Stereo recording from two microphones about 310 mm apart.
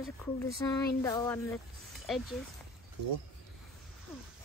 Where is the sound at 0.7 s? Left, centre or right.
Centre.